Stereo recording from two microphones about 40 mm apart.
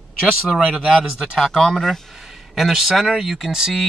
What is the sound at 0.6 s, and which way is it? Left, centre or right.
Speech, centre.